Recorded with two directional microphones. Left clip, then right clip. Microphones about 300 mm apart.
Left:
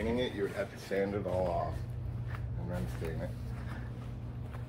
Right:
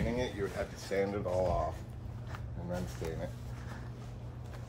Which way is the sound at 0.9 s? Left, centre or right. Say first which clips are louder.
Even; centre.